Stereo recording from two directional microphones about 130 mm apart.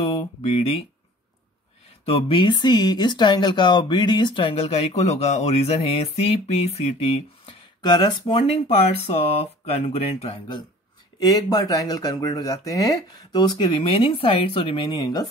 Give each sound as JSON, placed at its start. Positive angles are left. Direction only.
{"t": 0.0, "sound": "speech", "side_deg": 50}
{"t": 2.0, "sound": "speech", "side_deg": 45}
{"t": 7.8, "sound": "speech", "side_deg": 30}
{"t": 8.5, "sound": "speech", "side_deg": 55}
{"t": 11.1, "sound": "speech", "side_deg": 30}